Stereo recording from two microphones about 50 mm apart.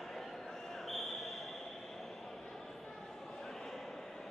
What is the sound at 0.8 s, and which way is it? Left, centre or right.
Basketball bounce, centre.